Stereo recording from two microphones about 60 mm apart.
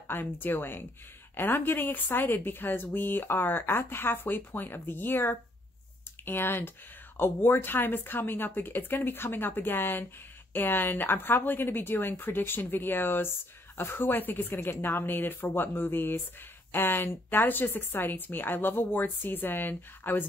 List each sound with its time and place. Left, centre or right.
0.1 s speech: left